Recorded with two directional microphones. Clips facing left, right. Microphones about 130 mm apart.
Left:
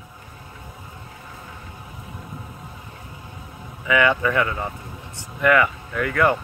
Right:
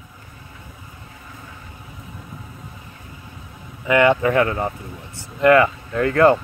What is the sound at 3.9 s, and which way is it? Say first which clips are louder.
Speech: right 4 dB; 20° right (ahead or behind).